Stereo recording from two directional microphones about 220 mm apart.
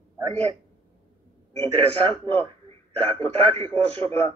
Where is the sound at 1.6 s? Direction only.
25° right (ahead or behind).